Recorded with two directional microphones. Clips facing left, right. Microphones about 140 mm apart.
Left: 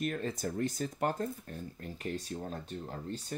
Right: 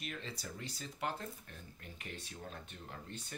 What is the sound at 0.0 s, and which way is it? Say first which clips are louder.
Speech: left 11 dB; 50° left (ahead or behind).